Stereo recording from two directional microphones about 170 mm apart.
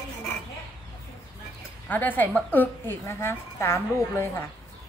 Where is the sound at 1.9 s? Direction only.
10° left (ahead or behind).